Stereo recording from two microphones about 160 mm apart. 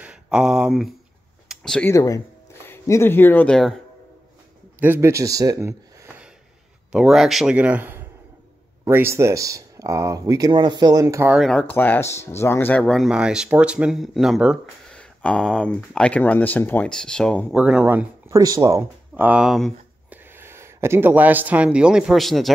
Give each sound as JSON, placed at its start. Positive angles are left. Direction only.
{"t": 0.0, "sound": "speech", "side_deg": -5}
{"t": 1.5, "sound": "a sound", "side_deg": 5}
{"t": 1.9, "sound": "speech", "side_deg": 20}
{"t": 4.7, "sound": "speech", "side_deg": -10}
{"t": 6.9, "sound": "speech", "side_deg": -5}
{"t": 11.2, "sound": "speech", "side_deg": 0}
{"t": 17.6, "sound": "speech", "side_deg": -5}
{"t": 18.4, "sound": "speech", "side_deg": -25}
{"t": 18.8, "sound": "speech", "side_deg": -10}
{"t": 20.3, "sound": "speech", "side_deg": -15}